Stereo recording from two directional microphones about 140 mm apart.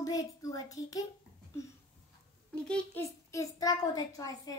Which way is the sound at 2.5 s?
5° left (ahead or behind).